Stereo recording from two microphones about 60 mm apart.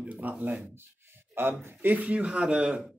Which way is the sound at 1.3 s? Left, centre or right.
Right.